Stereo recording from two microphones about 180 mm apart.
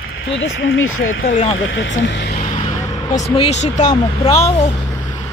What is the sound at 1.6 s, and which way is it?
Speech, 90° left.